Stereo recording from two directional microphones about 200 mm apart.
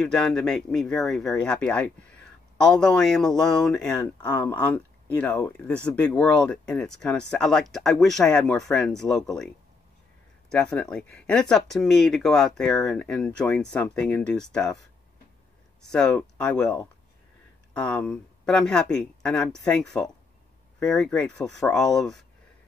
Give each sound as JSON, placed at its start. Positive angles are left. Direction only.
{"t": 0.0, "sound": "speech", "side_deg": 5}
{"t": 10.5, "sound": "speech", "side_deg": 5}
{"t": 15.9, "sound": "speech", "side_deg": 5}
{"t": 17.7, "sound": "speech", "side_deg": 5}